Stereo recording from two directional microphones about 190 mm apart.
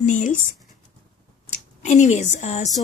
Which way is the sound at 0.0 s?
40° left (ahead or behind).